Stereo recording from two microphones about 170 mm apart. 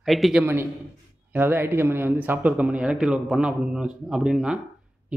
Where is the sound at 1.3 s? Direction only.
10° right (ahead or behind).